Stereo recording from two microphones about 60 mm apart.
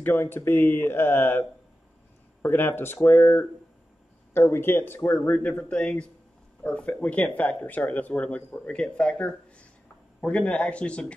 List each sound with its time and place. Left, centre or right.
0.0 s speech: left
2.4 s speech: left
5.7 s speech: centre